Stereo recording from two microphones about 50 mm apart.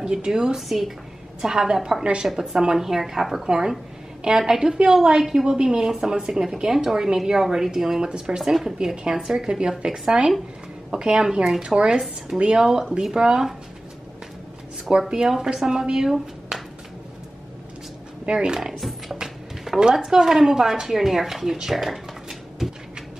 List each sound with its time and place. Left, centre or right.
0.0 s a woman's voice: centre
2.2 s a woman's voice: centre
14.9 s a woman's voice: centre
18.2 s a woman's voice: centre
18.8 s a sound: centre
19.9 s a woman's voice: centre